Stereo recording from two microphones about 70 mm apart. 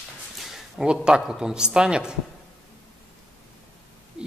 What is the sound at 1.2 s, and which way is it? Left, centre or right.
Speech, centre.